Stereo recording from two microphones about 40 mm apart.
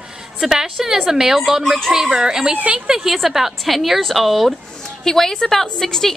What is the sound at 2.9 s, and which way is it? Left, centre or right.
A woman's voice, centre.